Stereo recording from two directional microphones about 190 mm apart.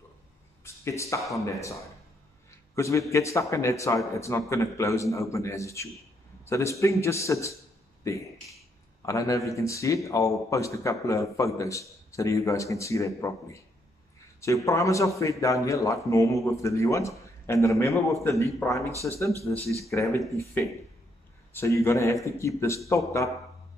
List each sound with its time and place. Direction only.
0.7 s a man's voice: 15° left (ahead or behind)
21.5 s a man's voice: 15° left (ahead or behind)